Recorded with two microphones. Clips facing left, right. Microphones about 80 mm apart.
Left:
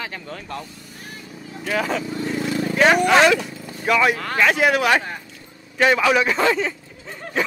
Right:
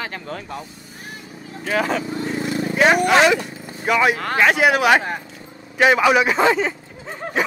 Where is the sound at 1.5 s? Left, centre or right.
Centre.